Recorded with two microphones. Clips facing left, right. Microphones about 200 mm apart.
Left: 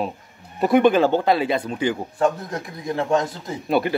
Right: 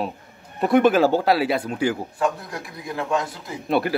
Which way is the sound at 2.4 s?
20° left (ahead or behind).